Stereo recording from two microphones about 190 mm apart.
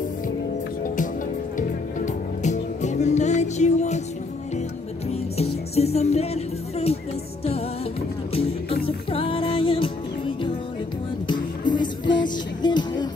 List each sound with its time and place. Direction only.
1.6 s music: 40° left (ahead or behind)
5.8 s music: 35° left (ahead or behind)
8.3 s music: 30° left (ahead or behind)